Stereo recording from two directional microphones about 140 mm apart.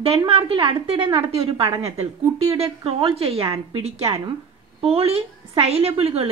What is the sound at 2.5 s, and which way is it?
A woman's voice, 45° right (ahead or behind).